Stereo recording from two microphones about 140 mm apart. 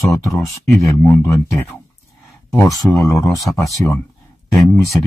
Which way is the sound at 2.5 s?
5° left (ahead or behind).